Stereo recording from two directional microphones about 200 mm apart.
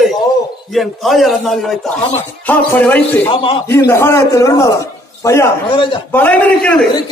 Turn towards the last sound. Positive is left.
turn(degrees=5)  # may be behind; listen again after turning